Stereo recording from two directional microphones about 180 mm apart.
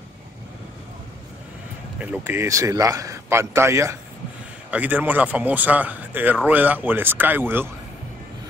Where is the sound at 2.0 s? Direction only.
10° right (ahead or behind).